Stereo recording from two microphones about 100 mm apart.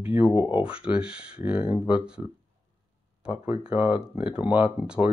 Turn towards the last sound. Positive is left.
turn(degrees=-15)  # may be behind; listen again after turning